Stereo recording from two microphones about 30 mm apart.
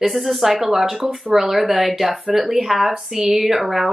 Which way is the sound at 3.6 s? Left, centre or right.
Right.